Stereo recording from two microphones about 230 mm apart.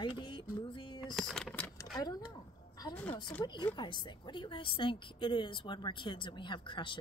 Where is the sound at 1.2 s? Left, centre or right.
Centre.